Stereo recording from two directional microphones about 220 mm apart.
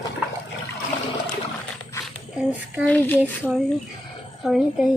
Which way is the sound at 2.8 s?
10° left (ahead or behind).